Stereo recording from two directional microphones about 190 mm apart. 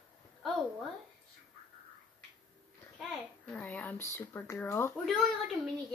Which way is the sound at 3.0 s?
5° left (ahead or behind).